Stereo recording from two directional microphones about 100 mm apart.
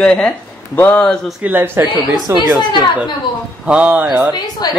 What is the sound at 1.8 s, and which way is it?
Speech, 45° right (ahead or behind).